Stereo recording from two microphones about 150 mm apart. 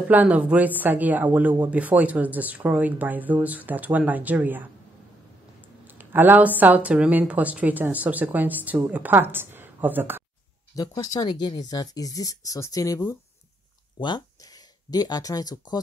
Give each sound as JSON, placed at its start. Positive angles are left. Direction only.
{"t": 0.1, "sound": "speech", "side_deg": -10}
{"t": 5.9, "sound": "a woman's voice", "side_deg": -15}
{"t": 10.7, "sound": "speech", "side_deg": 25}